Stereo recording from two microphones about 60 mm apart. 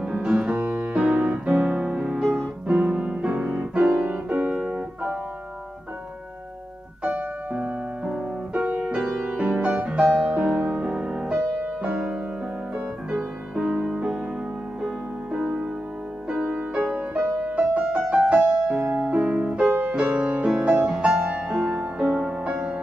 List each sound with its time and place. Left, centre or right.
0.0 s music: centre
2.3 s piano: centre
7.0 s piano: right
8.0 s music: centre
12.7 s music: right
16.3 s music: centre
16.8 s music: right
19.3 s music: centre
19.6 s music: right; by 22.0 s centre
22.0 s music: right